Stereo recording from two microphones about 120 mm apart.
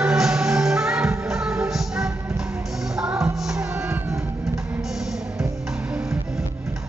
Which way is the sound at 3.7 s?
20° right (ahead or behind).